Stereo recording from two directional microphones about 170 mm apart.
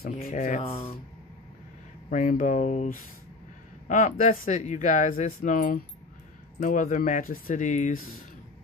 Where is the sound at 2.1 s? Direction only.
50° left (ahead or behind).